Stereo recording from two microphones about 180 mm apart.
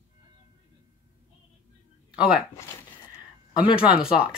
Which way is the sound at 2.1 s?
5° right (ahead or behind).